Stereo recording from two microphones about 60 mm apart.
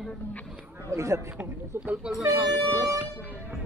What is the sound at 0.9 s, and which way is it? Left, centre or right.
Speech, right.